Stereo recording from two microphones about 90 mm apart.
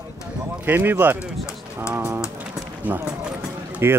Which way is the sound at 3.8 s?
25° right (ahead or behind).